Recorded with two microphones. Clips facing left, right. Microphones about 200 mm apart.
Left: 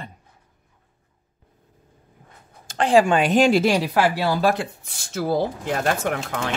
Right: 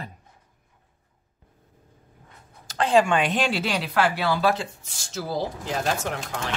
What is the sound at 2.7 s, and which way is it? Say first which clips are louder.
Speech: left 3 dB; 35° left (ahead or behind).